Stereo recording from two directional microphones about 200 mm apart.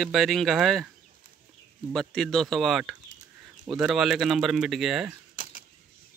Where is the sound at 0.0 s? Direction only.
Centre (ahead or behind).